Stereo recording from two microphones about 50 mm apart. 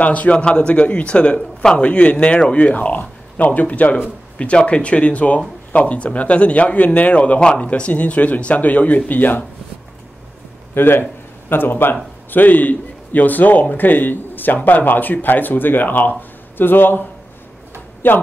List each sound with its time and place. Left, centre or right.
0.0 s speech: left
10.7 s a man's voice: left
18.0 s a man's voice: left